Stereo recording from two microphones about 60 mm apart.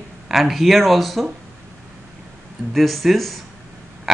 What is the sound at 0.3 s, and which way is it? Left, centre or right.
Speech, centre.